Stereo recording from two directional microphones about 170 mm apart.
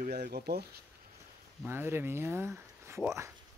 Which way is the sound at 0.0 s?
70° right (ahead or behind).